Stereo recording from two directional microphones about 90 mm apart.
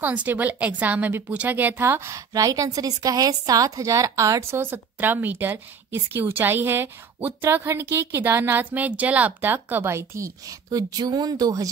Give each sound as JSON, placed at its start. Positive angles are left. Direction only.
{"t": 0.0, "sound": "a woman's voice", "side_deg": -15}